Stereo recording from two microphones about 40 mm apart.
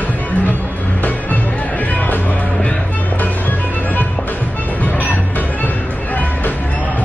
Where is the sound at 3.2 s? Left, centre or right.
Left.